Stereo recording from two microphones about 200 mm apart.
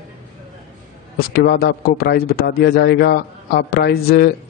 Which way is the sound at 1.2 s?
50° left (ahead or behind).